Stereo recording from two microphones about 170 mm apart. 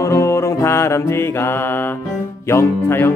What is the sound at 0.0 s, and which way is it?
Music, 15° left (ahead or behind).